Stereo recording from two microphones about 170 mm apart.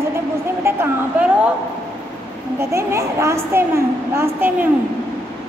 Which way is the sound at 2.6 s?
15° right (ahead or behind).